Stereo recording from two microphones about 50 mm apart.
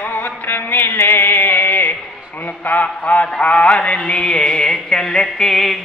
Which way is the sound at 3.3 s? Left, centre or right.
Left.